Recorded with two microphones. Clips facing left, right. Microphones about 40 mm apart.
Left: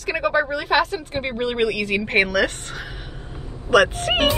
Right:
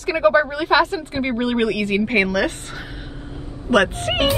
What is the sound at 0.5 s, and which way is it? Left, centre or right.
Speech, centre.